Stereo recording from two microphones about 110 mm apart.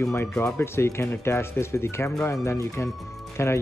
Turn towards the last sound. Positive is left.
turn(degrees=25)  # may be behind; listen again after turning